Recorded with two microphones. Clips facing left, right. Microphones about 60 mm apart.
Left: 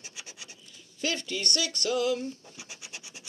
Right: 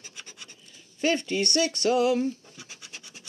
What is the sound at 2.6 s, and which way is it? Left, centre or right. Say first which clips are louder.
Scratch: even; centre.